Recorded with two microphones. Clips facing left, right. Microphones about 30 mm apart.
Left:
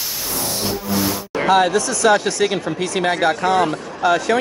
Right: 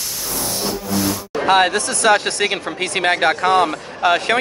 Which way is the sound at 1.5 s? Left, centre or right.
Right.